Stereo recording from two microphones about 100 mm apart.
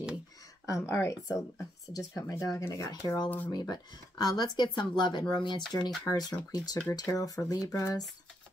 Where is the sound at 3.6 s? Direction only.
45° left (ahead or behind).